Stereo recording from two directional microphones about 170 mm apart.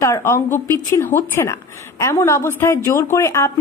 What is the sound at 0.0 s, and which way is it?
Speech, 15° left (ahead or behind).